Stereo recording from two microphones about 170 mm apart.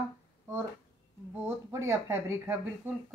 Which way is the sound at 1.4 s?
15° right (ahead or behind).